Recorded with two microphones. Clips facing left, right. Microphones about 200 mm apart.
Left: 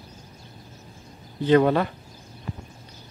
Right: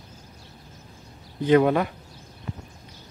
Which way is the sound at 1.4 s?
10° right (ahead or behind).